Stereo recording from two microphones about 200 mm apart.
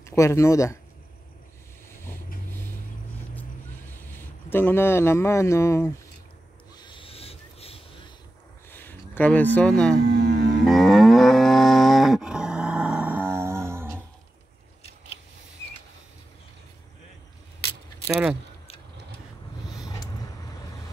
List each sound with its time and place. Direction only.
0.0 s speech: 15° left (ahead or behind)
4.1 s speech: 10° left (ahead or behind)
6.7 s vehicle: 20° left (ahead or behind)
8.6 s a sound: 10° left (ahead or behind)
10.0 s music: 55° right (ahead or behind)
10.6 s livestock: centre (ahead or behind)